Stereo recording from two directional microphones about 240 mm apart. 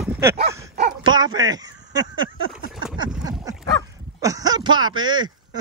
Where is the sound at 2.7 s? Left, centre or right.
Centre.